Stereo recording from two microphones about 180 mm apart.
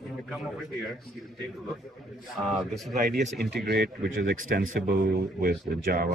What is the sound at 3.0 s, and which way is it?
Speech, 55° right (ahead or behind).